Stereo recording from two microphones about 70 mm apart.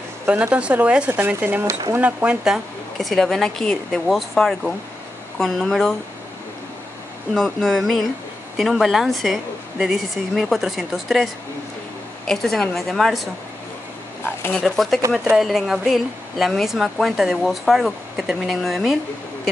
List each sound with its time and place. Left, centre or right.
0.3 s speech: centre
1.2 s speech: right
2.4 s a woman's voice: centre
3.1 s speech: centre
7.3 s speech: centre
12.3 s speech: centre
14.6 s speech: centre